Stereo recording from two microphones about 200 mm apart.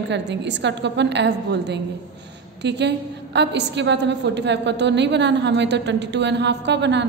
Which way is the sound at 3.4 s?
60° right (ahead or behind).